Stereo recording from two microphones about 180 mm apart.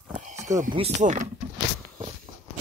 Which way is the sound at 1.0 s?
45° right (ahead or behind).